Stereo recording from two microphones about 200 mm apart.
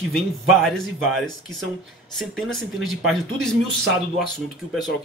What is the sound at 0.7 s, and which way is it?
Speech, centre (ahead or behind).